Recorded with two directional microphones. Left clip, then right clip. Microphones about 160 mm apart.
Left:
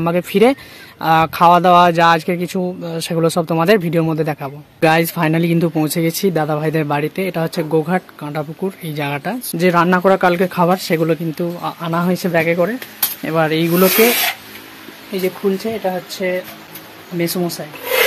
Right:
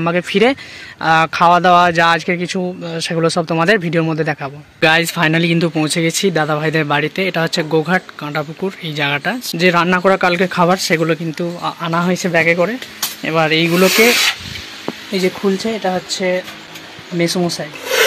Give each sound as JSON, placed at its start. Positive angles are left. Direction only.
{"t": 0.0, "sound": "speech", "side_deg": 10}
{"t": 15.1, "sound": "speech", "side_deg": -35}